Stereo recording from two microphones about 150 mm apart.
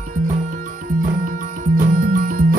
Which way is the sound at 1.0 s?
65° right (ahead or behind).